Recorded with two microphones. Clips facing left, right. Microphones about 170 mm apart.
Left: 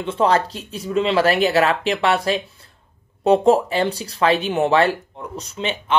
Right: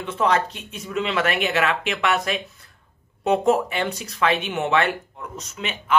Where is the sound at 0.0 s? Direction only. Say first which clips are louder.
Left 3 dB; 30° left (ahead or behind).